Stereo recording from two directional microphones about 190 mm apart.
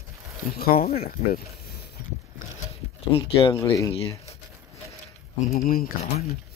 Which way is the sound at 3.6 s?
15° left (ahead or behind).